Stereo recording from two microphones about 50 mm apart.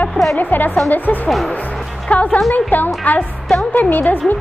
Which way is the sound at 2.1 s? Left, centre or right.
Left.